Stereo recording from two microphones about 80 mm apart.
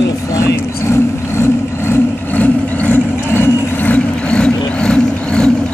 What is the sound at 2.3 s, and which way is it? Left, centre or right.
Vehicle, left.